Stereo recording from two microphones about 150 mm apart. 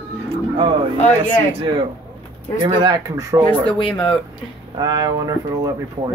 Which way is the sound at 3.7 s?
35° left (ahead or behind).